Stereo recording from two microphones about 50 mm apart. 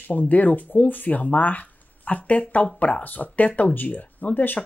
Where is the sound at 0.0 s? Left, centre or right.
Left.